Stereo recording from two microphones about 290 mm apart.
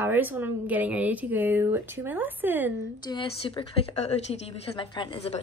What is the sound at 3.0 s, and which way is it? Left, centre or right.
A woman's voice, centre.